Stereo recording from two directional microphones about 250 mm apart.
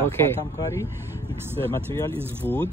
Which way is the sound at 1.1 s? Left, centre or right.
Centre.